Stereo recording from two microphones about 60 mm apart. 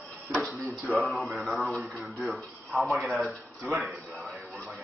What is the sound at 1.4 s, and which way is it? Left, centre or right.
Speech, centre.